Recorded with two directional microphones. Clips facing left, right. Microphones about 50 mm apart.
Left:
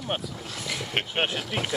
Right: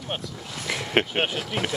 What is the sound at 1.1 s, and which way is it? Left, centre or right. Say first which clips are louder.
Speech: right 1 dB; centre.